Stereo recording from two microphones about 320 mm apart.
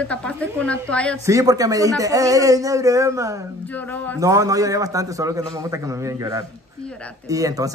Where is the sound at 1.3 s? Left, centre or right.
Centre.